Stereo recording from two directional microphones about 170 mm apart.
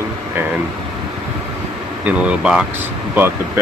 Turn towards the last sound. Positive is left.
turn(degrees=-10)  # may be behind; listen again after turning